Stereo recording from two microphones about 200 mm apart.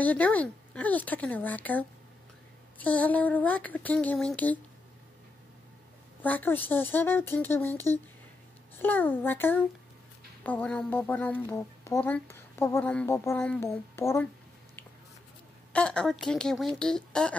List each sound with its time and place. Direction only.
0.0 s speech: 10° left (ahead or behind)
6.2 s speech: 10° left (ahead or behind)
15.7 s a woman's voice: 5° left (ahead or behind)